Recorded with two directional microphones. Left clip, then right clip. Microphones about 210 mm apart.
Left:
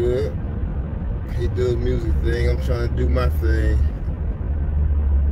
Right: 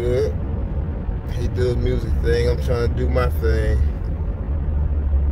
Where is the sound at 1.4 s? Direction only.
20° right (ahead or behind).